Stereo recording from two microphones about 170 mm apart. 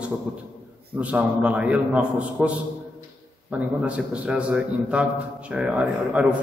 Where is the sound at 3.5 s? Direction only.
5° right (ahead or behind).